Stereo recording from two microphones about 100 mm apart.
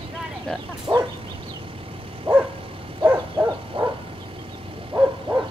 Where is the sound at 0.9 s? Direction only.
20° right (ahead or behind).